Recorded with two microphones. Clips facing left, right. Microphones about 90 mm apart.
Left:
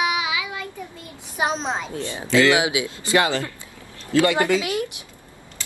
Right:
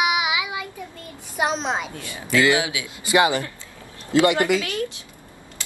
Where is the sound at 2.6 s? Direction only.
20° left (ahead or behind).